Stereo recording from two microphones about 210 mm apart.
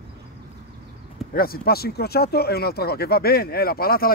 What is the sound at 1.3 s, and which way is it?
Speech, 45° left (ahead or behind).